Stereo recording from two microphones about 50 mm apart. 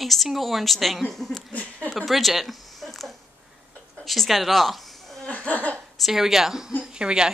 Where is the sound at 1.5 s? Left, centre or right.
Left.